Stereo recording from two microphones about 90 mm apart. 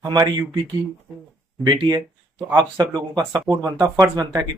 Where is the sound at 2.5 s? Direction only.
50° right (ahead or behind).